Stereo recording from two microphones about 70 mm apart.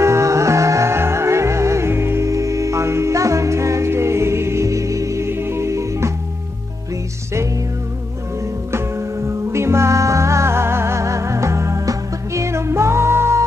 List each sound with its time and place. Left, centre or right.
0.0 s music: right
8.7 s music: right